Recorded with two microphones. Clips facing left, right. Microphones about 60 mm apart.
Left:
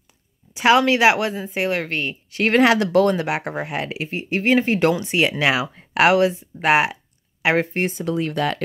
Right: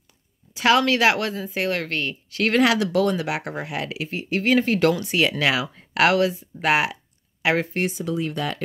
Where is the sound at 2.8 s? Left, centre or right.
Left.